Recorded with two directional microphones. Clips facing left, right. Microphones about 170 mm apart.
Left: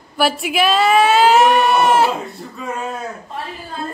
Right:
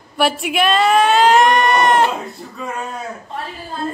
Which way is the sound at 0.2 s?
Centre (ahead or behind).